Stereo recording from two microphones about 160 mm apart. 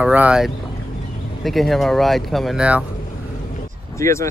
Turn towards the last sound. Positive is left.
turn(degrees=15)  # may be behind; listen again after turning